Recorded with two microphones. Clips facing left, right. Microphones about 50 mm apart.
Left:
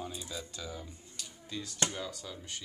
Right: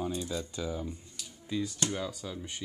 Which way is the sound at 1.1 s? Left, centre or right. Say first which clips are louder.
Right 5 dB; centre.